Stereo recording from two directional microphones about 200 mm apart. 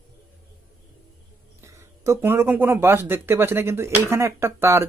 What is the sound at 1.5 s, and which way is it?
Speech, 15° right (ahead or behind).